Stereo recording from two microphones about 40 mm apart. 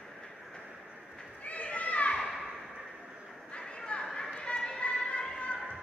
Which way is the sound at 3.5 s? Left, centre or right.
Left.